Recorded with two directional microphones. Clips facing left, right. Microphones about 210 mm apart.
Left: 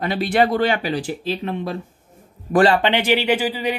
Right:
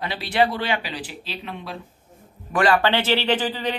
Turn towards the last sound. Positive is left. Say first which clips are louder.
# left 3 dB
turn(degrees=10)  # may be behind; listen again after turning